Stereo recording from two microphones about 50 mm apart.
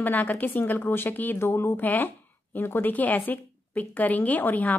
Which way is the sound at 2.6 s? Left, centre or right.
Left.